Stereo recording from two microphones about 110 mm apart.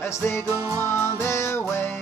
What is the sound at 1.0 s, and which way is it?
Music, 25° left (ahead or behind).